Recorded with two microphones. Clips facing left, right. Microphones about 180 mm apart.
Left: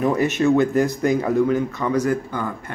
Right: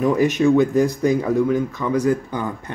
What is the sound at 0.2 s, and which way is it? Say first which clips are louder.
Speech: right 2 dB; 15° right (ahead or behind).